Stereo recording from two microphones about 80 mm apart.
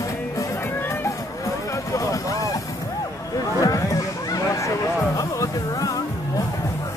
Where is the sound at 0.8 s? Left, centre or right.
Left.